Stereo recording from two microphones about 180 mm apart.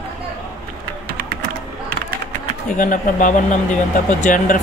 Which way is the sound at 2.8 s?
50° left (ahead or behind).